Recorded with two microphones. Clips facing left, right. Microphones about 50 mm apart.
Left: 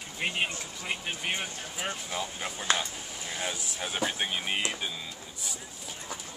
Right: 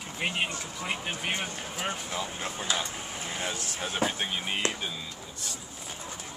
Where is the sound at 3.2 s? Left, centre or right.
Right.